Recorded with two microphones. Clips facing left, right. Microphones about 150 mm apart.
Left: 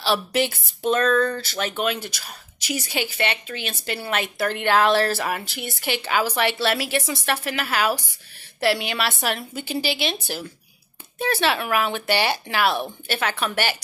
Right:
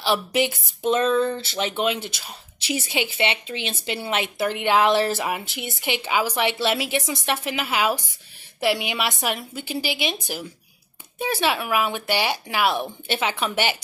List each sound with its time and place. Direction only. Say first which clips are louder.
0.0 s speech: even; 15° right (ahead or behind)
11.1 s speech: left 1 dB; 10° right (ahead or behind)